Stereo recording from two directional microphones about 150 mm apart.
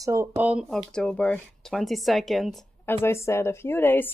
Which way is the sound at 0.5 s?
Centre (ahead or behind).